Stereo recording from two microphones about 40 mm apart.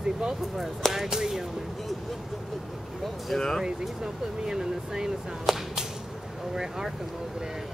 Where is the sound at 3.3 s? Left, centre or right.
Centre.